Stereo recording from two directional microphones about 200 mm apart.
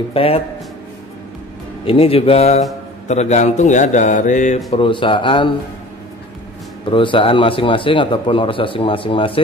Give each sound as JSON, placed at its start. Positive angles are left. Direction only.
{"t": 0.1, "sound": "a man's voice", "side_deg": 30}
{"t": 1.9, "sound": "a man's voice", "side_deg": 30}
{"t": 4.7, "sound": "a man's voice", "side_deg": 25}
{"t": 6.9, "sound": "a man's voice", "side_deg": 25}